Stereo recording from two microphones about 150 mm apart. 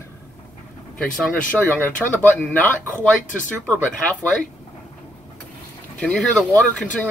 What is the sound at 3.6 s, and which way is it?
Speech, 5° left (ahead or behind).